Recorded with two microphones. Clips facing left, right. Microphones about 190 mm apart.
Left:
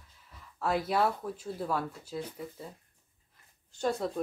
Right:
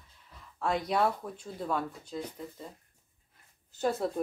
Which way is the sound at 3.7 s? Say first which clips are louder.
Right 1 dB; 5° right (ahead or behind).